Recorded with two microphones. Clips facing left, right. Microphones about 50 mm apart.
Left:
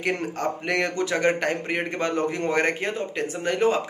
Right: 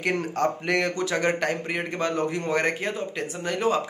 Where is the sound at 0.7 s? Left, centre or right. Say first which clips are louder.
Even; left.